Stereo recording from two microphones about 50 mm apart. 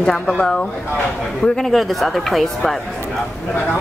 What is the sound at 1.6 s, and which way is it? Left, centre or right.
A woman's voice, centre.